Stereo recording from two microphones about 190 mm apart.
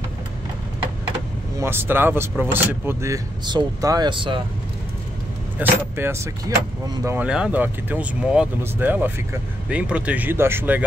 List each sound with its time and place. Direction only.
1.6 s speech: 10° right (ahead or behind)
5.6 s speech: 10° right (ahead or behind)